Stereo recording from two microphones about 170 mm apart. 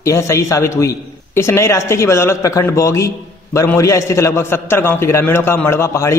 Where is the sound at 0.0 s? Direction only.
15° left (ahead or behind).